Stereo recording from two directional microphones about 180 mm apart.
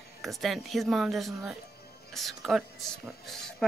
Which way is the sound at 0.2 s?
Centre (ahead or behind).